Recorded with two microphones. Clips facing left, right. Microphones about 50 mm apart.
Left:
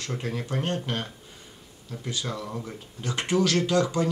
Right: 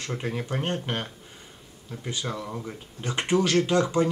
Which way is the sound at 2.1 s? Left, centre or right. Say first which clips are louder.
Even; centre.